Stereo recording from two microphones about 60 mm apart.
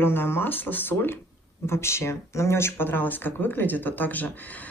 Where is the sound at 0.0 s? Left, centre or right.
Left.